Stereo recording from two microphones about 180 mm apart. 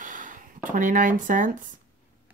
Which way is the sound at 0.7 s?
45° right (ahead or behind).